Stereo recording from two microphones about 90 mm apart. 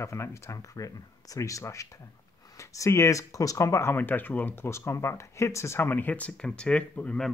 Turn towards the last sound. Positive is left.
turn(degrees=15)  # may be behind; listen again after turning